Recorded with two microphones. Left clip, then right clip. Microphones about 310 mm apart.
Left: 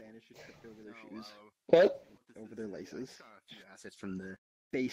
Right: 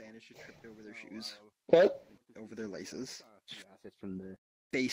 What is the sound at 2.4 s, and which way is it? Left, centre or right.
Speech, centre.